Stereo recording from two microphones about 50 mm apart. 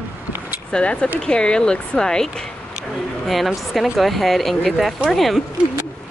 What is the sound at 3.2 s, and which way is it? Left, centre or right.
Speech, centre.